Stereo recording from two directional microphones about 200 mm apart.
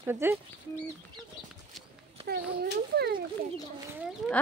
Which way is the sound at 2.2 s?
55° right (ahead or behind).